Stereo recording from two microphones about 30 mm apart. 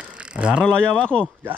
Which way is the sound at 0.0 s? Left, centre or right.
Right.